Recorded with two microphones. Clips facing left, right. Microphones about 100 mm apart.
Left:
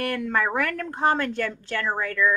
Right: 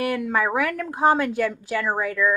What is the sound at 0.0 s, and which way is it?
A woman's voice, 5° right (ahead or behind).